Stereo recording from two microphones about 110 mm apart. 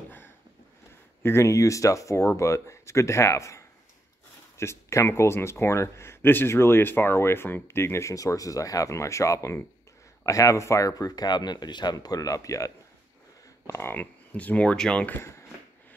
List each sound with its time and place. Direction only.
1.2 s speech: 25° left (ahead or behind)